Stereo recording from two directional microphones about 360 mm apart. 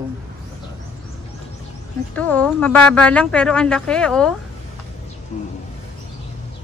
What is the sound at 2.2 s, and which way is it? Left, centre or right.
A woman's voice, centre.